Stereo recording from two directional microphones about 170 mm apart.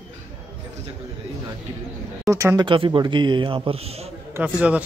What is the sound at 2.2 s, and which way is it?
Speech, 15° right (ahead or behind).